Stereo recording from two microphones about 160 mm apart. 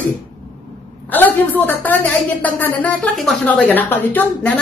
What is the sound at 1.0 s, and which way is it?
A woman's voice, 10° left (ahead or behind).